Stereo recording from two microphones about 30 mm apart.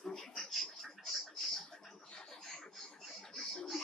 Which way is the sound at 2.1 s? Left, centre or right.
Centre.